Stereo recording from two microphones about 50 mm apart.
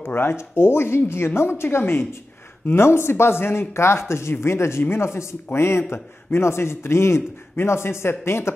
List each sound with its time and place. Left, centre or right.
0.0 s a man's voice: left
1.8 s speech: left
2.7 s a man's voice: left